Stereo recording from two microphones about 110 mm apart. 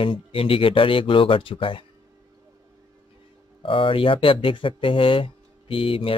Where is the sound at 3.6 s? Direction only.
55° left (ahead or behind).